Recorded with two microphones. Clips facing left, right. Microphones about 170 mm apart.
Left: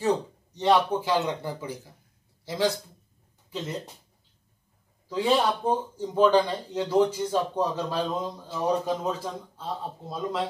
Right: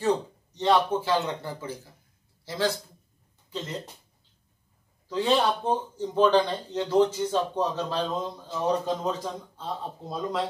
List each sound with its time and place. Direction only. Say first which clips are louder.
0.6 s speech: left 1 dB; 15° left (ahead or behind)
5.1 s speech: even; 10° left (ahead or behind)